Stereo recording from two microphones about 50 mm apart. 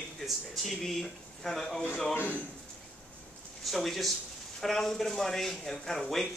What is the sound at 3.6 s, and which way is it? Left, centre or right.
Speech, centre.